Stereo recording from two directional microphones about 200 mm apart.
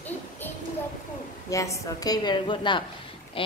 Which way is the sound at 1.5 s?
15° left (ahead or behind).